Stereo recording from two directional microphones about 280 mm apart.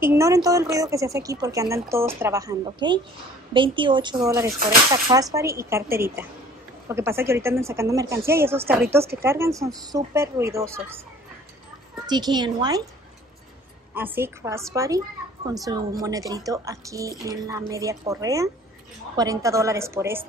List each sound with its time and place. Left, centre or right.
0.0 s a woman's voice: centre
12.1 s a woman's voice: centre
13.9 s a woman's voice: centre